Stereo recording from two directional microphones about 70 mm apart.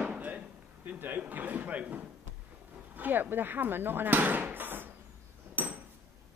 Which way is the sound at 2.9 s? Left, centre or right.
Right.